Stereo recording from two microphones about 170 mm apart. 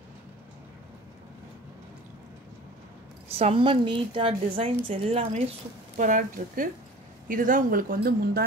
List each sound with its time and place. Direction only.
3.3 s a woman's voice: 35° right (ahead or behind)
5.9 s speech: 50° right (ahead or behind)